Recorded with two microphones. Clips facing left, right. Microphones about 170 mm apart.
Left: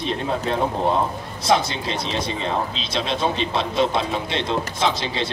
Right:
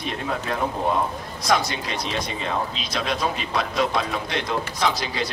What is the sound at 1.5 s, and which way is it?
Speech, 25° left (ahead or behind).